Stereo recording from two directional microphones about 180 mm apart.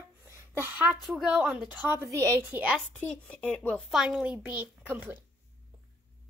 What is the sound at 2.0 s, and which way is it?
Speech, 15° right (ahead or behind).